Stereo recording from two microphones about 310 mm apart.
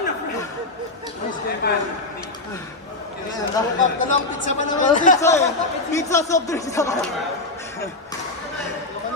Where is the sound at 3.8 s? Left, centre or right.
Left.